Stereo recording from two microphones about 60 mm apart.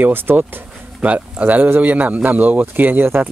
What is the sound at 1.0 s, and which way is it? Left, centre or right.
Speech, right.